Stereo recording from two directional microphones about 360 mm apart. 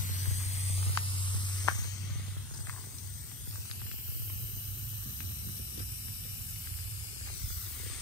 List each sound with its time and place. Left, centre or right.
0.3 s spray: centre